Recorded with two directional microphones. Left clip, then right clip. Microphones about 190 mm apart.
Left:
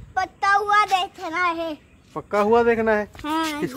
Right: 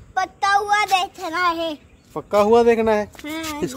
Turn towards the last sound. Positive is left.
turn(degrees=50)  # may be behind; listen again after turning